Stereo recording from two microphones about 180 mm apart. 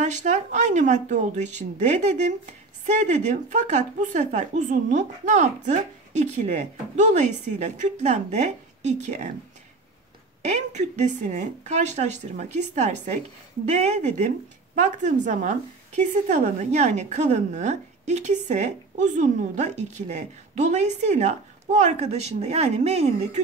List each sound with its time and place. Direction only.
0.0 s speech: 40° right (ahead or behind)
10.4 s speech: 40° right (ahead or behind)
16.0 s speech: 40° right (ahead or behind)